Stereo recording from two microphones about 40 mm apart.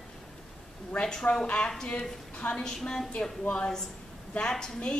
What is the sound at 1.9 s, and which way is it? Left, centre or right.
Speech, left.